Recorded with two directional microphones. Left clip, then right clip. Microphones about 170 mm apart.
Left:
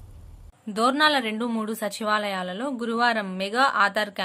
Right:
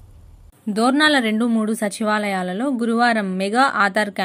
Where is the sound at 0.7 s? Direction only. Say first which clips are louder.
Right 4 dB; 15° right (ahead or behind).